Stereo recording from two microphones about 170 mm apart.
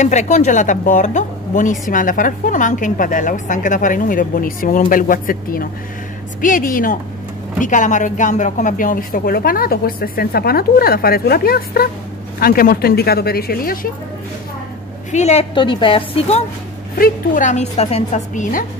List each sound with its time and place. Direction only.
0.0 s a woman's voice: 45° left (ahead or behind); by 13.7 s 60° left (ahead or behind)
15.0 s a woman's voice: 40° left (ahead or behind)
15.5 s a woman's voice: 30° left (ahead or behind)
17.0 s a woman's voice: 50° left (ahead or behind)